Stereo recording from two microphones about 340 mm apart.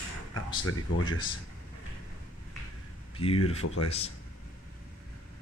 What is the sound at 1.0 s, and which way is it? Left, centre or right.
Speech, centre.